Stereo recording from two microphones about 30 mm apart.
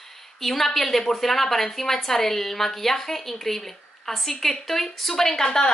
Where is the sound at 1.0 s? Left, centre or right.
Centre.